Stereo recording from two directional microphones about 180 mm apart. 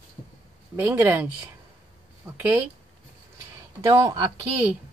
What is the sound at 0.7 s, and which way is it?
Speech, 15° right (ahead or behind).